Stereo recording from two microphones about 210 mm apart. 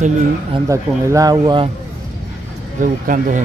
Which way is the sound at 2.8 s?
40° right (ahead or behind).